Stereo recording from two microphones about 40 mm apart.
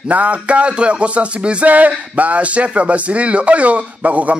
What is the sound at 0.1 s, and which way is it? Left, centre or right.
Speech, right.